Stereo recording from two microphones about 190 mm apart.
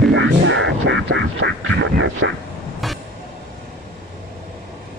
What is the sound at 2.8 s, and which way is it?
Train, centre (ahead or behind).